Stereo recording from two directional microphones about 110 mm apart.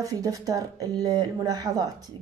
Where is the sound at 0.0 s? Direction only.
30° right (ahead or behind).